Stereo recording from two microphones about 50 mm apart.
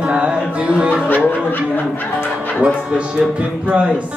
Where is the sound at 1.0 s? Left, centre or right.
Left.